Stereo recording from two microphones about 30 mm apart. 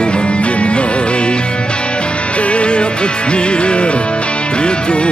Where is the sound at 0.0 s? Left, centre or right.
Left.